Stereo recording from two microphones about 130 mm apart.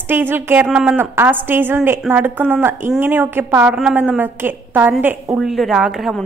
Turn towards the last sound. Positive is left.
turn(degrees=0)  # may be behind; listen again after turning